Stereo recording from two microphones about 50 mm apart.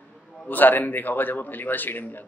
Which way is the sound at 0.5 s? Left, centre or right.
Left.